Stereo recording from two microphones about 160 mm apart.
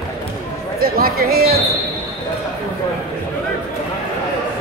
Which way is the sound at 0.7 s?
70° right (ahead or behind).